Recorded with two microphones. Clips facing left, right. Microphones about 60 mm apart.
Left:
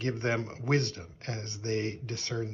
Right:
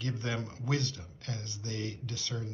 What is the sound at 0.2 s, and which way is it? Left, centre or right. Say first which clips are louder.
Speech: left 5 dB; left.